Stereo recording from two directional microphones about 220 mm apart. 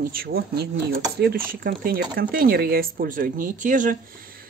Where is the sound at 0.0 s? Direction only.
40° right (ahead or behind).